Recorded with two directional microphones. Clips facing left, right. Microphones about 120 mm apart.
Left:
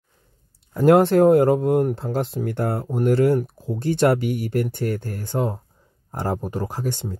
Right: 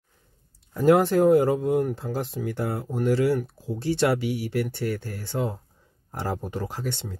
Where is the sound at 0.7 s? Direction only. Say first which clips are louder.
Left 4 dB; 65° left (ahead or behind).